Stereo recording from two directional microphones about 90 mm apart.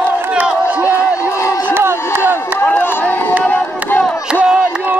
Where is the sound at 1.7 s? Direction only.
25° right (ahead or behind).